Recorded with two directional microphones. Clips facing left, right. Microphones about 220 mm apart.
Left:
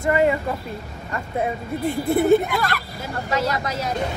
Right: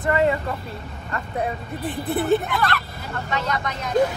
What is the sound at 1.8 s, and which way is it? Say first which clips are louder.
Speech: left 5 dB; centre (ahead or behind).